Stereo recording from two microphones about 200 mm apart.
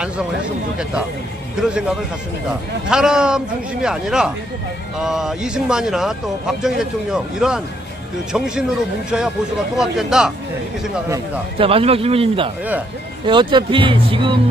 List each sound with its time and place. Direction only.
1.6 s speech: 5° right (ahead or behind)
11.5 s speech: 30° right (ahead or behind)